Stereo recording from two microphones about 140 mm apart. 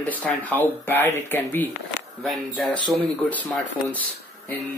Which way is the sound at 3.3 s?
10° left (ahead or behind).